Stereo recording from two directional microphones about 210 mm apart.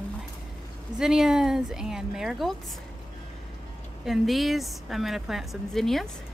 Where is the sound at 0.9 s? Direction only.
5° right (ahead or behind).